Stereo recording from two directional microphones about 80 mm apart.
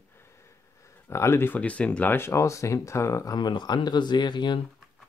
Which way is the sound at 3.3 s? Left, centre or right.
Left.